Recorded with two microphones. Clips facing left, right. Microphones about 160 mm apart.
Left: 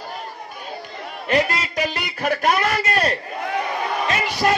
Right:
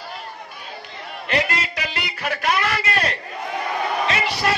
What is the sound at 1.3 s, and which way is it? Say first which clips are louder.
Music: left 3 dB; 45° left (ahead or behind).